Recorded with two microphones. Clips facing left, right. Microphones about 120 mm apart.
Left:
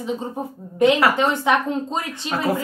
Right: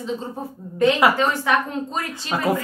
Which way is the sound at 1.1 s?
20° left (ahead or behind).